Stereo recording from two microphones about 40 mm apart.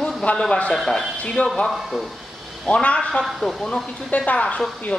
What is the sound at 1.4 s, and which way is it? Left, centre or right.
Speech, left.